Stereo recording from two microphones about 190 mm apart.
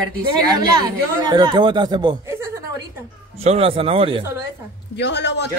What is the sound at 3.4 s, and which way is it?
Speech, 30° right (ahead or behind).